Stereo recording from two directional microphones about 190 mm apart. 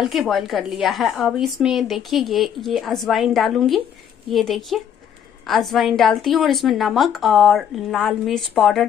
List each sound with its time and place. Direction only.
0.0 s speech: centre (ahead or behind)